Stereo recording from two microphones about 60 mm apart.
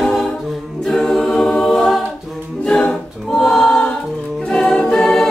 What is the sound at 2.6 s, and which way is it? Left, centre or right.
Music, centre.